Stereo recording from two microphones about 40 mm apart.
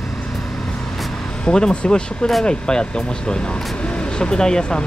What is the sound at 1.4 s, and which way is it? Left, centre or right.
Speech, left.